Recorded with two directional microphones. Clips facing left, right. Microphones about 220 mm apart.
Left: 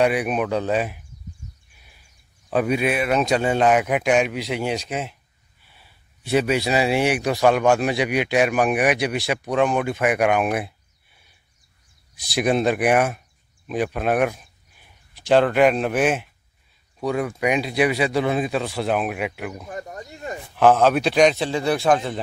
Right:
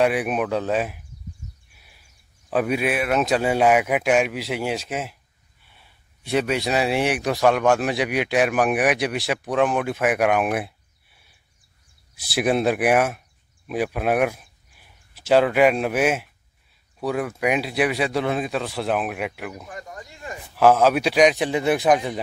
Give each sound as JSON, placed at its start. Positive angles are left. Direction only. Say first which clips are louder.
{"t": 0.0, "sound": "speech", "louder": "left 1 dB", "side_deg": 0}
{"t": 1.7, "sound": "a sound", "louder": "even", "side_deg": -5}
{"t": 2.5, "sound": "speech", "louder": "left 1 dB", "side_deg": -5}
{"t": 12.2, "sound": "speech", "louder": "left 1 dB", "side_deg": -5}
{"t": 19.8, "sound": "a sound", "louder": "left 4 dB", "side_deg": 25}
{"t": 20.5, "sound": "a man's voice", "louder": "even", "side_deg": -5}